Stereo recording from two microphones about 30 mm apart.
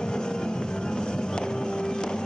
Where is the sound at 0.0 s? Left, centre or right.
Left.